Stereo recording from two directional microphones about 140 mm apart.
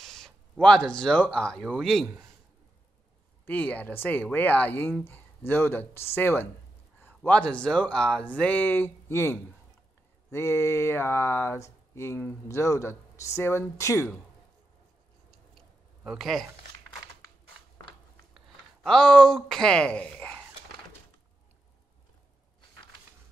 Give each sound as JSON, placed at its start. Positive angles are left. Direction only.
{"t": 0.0, "sound": "speech", "side_deg": 5}
{"t": 3.4, "sound": "speech", "side_deg": 10}
{"t": 16.0, "sound": "speech", "side_deg": -5}
{"t": 18.8, "sound": "speech", "side_deg": 5}